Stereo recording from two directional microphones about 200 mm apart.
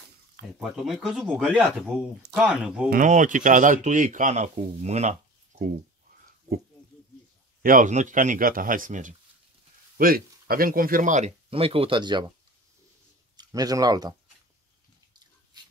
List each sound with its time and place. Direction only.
0.6 s speech: centre (ahead or behind)
2.9 s speech: 40° right (ahead or behind)
7.6 s speech: 40° right (ahead or behind); by 12.3 s 25° right (ahead or behind)
13.4 s speech: 20° right (ahead or behind)